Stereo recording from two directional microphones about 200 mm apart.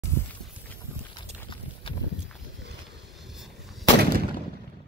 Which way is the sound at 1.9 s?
25° left (ahead or behind).